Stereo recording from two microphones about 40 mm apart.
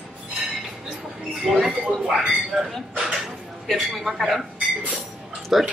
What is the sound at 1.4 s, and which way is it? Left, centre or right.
Speech, centre.